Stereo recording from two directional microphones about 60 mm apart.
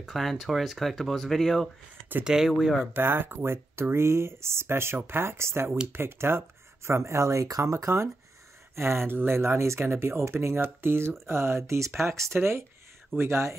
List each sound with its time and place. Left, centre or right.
0.0 s speech: centre
2.2 s speech: centre
2.9 s speech: right
7.4 s speech: right